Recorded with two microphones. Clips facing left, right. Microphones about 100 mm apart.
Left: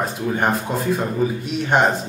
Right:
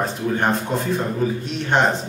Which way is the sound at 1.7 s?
10° left (ahead or behind).